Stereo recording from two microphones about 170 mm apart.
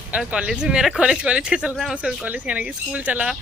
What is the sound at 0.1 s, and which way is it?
Speech, 5° right (ahead or behind).